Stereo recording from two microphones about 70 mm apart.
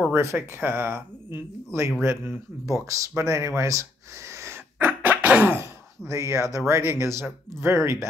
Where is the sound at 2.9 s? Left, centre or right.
Right.